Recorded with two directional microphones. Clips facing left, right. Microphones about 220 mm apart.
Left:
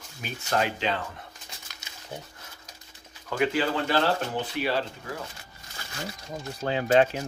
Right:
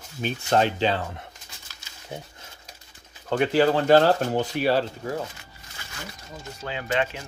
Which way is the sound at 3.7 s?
45° right (ahead or behind).